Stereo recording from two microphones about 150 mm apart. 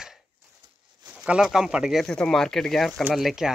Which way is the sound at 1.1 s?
5° right (ahead or behind).